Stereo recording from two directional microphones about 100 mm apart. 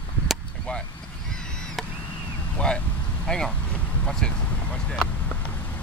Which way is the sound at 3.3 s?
5° left (ahead or behind).